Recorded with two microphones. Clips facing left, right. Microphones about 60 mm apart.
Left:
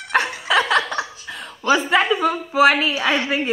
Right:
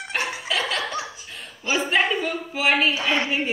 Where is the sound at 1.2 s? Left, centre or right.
Left.